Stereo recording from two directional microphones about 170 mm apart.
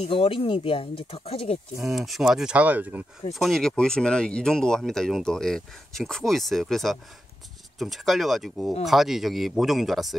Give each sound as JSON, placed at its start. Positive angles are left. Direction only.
{"t": 0.0, "sound": "speech", "side_deg": 35}
{"t": 1.8, "sound": "speech", "side_deg": 0}
{"t": 3.3, "sound": "speech", "side_deg": 0}